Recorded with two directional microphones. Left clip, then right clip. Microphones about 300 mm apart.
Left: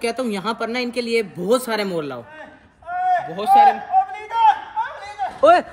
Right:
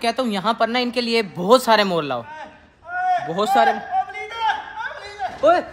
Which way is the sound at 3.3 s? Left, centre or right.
Centre.